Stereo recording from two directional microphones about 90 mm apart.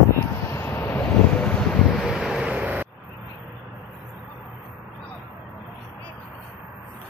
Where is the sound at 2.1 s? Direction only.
10° right (ahead or behind).